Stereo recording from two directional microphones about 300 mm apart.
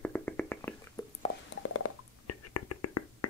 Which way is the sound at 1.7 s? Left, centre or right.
Left.